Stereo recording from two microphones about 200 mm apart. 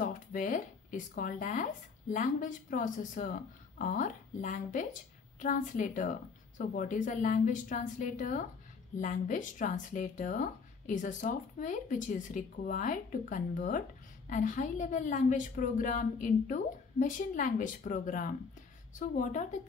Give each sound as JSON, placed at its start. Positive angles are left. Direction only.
{"t": 0.0, "sound": "speech", "side_deg": 45}